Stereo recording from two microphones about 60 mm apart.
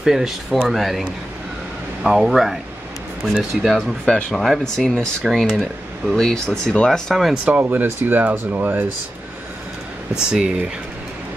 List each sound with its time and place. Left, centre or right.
0.0 s speech: centre
2.0 s speech: centre
3.7 s speech: centre
6.1 s speech: centre
7.4 s speech: right
10.1 s speech: centre